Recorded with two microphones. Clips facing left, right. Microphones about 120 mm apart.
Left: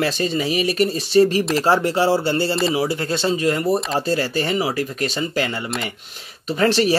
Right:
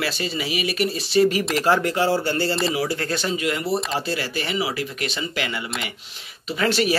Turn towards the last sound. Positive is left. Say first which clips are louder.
# left 4 dB
turn(degrees=40)  # may be behind; listen again after turning